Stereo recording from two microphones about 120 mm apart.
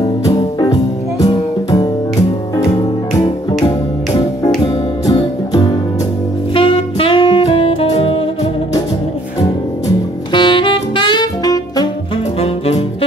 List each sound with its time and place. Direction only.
0.0 s music: 30° left (ahead or behind)
4.1 s music: 30° left (ahead or behind)
6.5 s saxophone: 50° left (ahead or behind)
9.8 s saxophone: 40° left (ahead or behind)
12.4 s saxophone: 60° left (ahead or behind)